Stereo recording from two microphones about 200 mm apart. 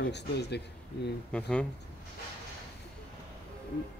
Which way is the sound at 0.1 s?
55° left (ahead or behind).